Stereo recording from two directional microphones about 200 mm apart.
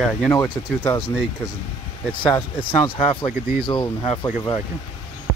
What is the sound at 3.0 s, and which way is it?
Speech, 30° left (ahead or behind).